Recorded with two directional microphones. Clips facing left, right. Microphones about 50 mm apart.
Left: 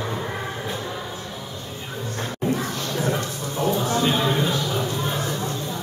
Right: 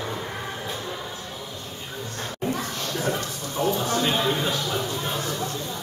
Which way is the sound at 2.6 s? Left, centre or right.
Left.